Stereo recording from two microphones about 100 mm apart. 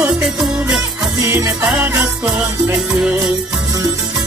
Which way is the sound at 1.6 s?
15° right (ahead or behind).